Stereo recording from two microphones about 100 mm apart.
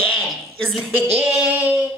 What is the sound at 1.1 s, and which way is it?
Child singing, 15° right (ahead or behind).